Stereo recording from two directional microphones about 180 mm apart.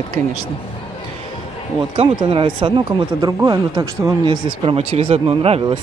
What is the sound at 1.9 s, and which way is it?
Speech, 30° right (ahead or behind).